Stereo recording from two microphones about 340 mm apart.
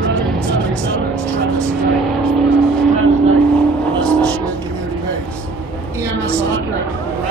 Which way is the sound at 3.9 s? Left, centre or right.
Centre.